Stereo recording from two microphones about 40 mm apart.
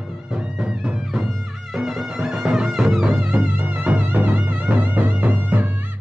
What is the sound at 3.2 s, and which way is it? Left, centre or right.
Music, right.